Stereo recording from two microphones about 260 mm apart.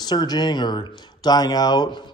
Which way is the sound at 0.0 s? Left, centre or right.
Centre.